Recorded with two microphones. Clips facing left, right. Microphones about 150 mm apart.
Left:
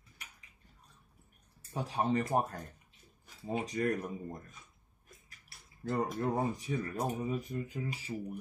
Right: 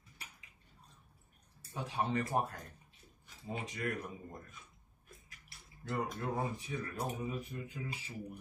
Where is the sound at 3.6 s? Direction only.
40° left (ahead or behind).